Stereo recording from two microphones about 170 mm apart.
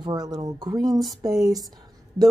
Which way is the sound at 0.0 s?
25° right (ahead or behind).